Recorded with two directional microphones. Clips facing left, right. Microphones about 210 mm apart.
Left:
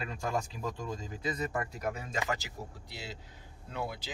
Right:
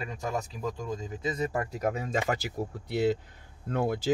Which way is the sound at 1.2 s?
30° right (ahead or behind).